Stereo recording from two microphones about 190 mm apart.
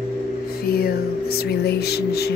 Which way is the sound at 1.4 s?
60° left (ahead or behind).